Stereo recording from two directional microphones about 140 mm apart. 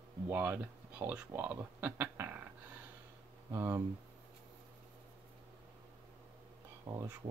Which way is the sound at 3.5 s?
15° right (ahead or behind).